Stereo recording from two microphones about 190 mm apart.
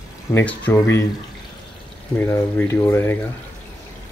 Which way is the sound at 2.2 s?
10° left (ahead or behind).